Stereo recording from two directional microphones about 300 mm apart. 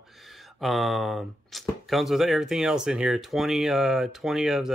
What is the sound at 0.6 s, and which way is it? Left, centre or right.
Speech, centre.